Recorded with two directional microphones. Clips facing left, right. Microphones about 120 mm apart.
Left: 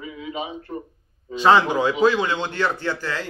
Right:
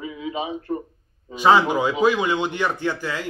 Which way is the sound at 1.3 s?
10° right (ahead or behind).